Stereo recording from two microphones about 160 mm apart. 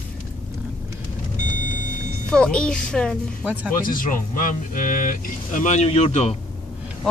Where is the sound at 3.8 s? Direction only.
60° left (ahead or behind); by 6.3 s 40° left (ahead or behind).